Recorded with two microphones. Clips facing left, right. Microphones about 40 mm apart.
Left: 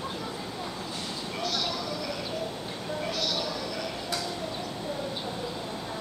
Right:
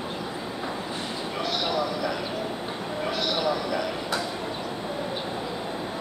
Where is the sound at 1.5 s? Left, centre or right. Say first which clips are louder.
Right 6 dB; right.